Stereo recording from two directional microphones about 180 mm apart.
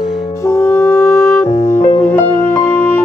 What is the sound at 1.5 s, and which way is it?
Music, 55° left (ahead or behind).